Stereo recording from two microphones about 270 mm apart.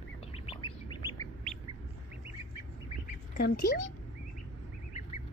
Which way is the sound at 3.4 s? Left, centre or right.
Left.